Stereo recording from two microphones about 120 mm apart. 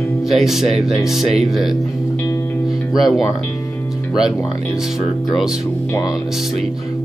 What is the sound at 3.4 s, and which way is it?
Music, 15° left (ahead or behind).